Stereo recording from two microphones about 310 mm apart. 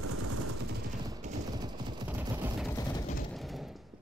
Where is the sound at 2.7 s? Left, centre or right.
Centre.